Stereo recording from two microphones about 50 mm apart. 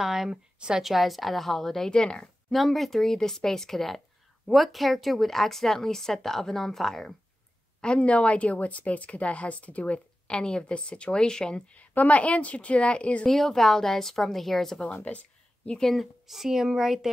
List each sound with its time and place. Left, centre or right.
0.0 s speech: centre
0.6 s a woman's voice: centre
0.8 s speech: centre
2.5 s speech: centre
7.8 s speech: left
11.7 s speech: left
13.3 s speech: centre
15.0 s a sound: left
15.9 s speech: centre